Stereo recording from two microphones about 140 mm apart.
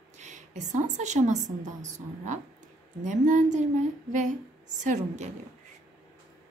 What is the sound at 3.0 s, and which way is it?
A woman's voice, 60° right (ahead or behind).